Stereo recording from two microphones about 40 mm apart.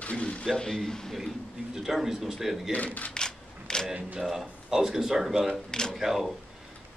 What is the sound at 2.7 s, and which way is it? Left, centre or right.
Speech, left.